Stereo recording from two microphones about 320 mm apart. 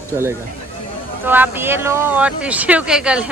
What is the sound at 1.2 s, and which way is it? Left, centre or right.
Speech, centre.